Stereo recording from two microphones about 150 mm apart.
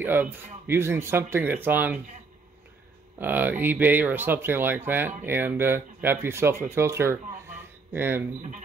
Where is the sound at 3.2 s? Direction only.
15° right (ahead or behind).